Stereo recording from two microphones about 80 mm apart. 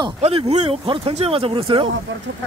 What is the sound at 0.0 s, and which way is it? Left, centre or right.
Speech, right.